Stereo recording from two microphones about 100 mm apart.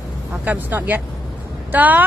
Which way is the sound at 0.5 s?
20° right (ahead or behind).